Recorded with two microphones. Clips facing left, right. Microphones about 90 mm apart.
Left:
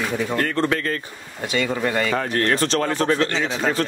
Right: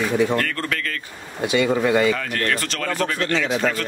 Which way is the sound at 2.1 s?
30° left (ahead or behind).